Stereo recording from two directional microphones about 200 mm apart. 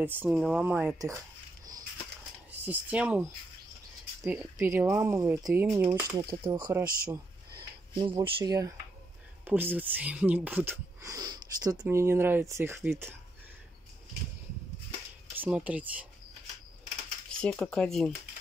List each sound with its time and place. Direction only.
0.0 s speech: 10° right (ahead or behind)
2.6 s speech: 10° right (ahead or behind)
7.9 s speech: 25° right (ahead or behind)
15.3 s speech: 10° right (ahead or behind)
17.4 s speech: 5° left (ahead or behind)